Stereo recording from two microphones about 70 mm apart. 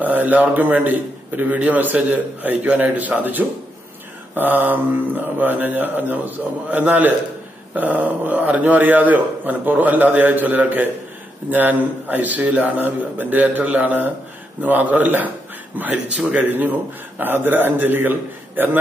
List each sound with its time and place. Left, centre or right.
0.0 s a man's voice: right
16.4 s a man's voice: right